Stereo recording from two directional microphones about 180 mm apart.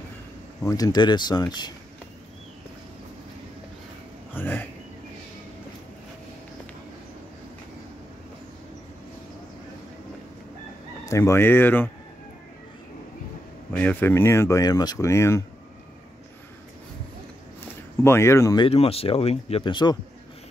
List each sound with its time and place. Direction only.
0.6 s speech: 20° left (ahead or behind)
4.3 s a sound: 10° left (ahead or behind)
11.1 s speech: 15° left (ahead or behind)
13.7 s speech: 10° left (ahead or behind)
17.6 s speech: 15° left (ahead or behind)
18.7 s speech: 35° left (ahead or behind)